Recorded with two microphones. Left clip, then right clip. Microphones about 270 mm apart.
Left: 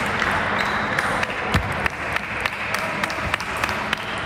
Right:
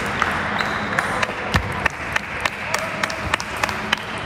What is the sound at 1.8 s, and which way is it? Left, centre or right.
Run, right.